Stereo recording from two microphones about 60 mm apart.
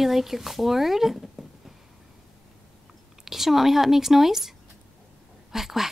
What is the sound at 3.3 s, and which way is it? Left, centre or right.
Speech, centre.